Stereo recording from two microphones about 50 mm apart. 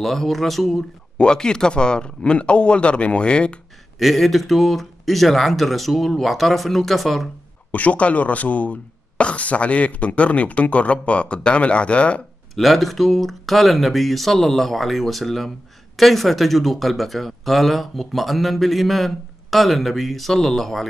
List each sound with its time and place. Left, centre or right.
0.0 s speech: centre
1.1 s speech: centre
4.0 s speech: centre
7.7 s speech: left
12.5 s speech: centre